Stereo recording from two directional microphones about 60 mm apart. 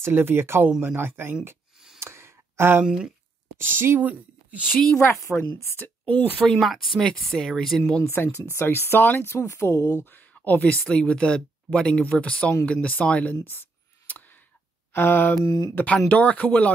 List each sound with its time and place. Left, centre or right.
0.0 s speech: right
2.0 s a sound: right
2.8 s speech: centre
3.5 s speech: right
4.0 s speech: right
4.9 s a woman's voice: left
5.4 s speech: left
6.0 s speech: left
6.6 s speech: centre
8.2 s speech: left
10.4 s speech: left
13.4 s a sound: left
14.9 s mantra: left
15.7 s speech: left